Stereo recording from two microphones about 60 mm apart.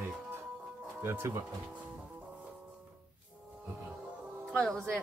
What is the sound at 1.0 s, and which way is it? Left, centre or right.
Speech, right.